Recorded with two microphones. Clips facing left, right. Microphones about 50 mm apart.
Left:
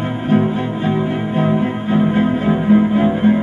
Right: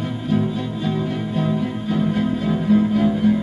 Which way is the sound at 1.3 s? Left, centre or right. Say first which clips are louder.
Left 6 dB; left.